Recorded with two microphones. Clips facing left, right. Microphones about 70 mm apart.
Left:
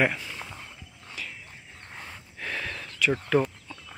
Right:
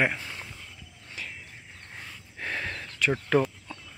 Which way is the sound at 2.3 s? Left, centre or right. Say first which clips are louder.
Right 1 dB; right.